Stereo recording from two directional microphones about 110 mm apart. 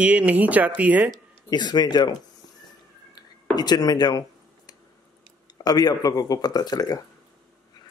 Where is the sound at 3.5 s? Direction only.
40° left (ahead or behind).